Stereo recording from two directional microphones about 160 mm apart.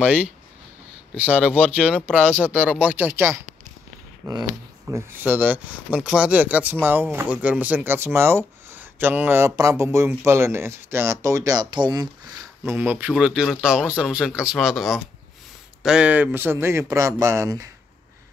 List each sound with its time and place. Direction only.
0.0 s speech: 10° right (ahead or behind); by 12.1 s 25° right (ahead or behind)
12.6 s speech: 10° right (ahead or behind)